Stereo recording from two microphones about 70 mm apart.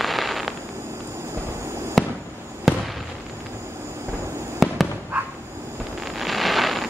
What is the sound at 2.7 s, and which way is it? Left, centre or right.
Fireworks, centre.